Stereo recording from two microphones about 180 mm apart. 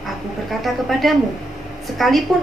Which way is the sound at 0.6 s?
Centre (ahead or behind).